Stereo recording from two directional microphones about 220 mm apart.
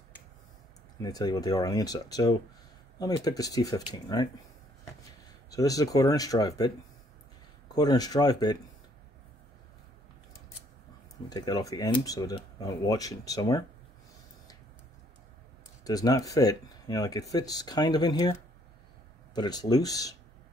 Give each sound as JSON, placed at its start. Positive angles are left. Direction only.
{"t": 1.0, "sound": "speech", "side_deg": 15}
{"t": 5.5, "sound": "speech", "side_deg": 15}
{"t": 11.2, "sound": "speech", "side_deg": 15}
{"t": 15.8, "sound": "speech", "side_deg": 15}
{"t": 19.3, "sound": "speech", "side_deg": 20}